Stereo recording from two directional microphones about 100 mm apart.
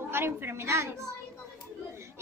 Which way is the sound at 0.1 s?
25° right (ahead or behind).